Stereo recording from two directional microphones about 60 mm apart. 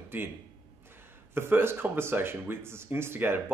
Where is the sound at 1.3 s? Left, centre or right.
Right.